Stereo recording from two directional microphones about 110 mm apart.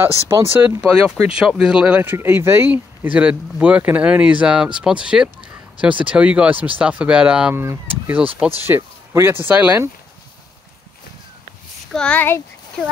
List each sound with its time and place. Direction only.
0.3 s speech: 20° right (ahead or behind)
0.9 s speech: 5° right (ahead or behind)
7.5 s speech: 20° right (ahead or behind)
11.9 s speech: 10° left (ahead or behind)